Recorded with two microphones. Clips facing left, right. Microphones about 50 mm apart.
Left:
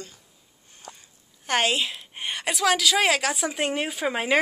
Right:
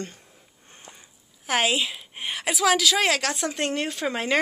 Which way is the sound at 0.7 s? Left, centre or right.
Right.